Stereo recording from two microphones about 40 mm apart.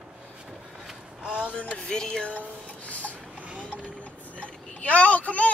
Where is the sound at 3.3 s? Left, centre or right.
Right.